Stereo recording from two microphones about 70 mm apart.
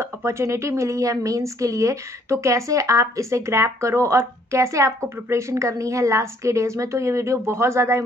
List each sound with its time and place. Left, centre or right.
0.0 s a woman's voice: right